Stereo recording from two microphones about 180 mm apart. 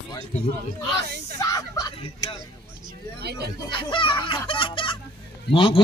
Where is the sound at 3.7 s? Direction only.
25° left (ahead or behind).